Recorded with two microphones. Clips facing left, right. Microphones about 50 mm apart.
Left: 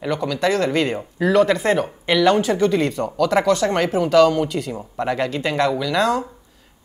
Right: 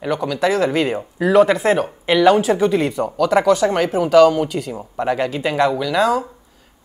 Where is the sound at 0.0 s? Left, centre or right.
Centre.